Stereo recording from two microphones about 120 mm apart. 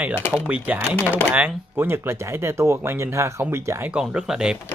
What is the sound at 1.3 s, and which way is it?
Speech, 15° right (ahead or behind).